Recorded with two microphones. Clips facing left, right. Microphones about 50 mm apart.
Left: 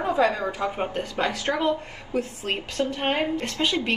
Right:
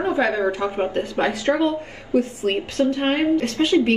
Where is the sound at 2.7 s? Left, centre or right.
Right.